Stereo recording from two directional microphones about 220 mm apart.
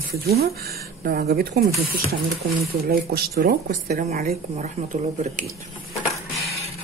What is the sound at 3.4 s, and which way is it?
Speech, 40° right (ahead or behind).